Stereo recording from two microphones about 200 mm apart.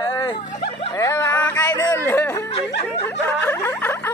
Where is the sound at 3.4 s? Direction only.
10° left (ahead or behind).